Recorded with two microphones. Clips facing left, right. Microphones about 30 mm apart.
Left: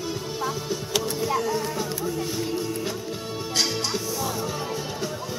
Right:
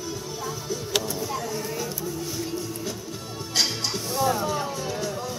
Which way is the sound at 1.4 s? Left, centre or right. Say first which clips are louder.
Left 4 dB; left.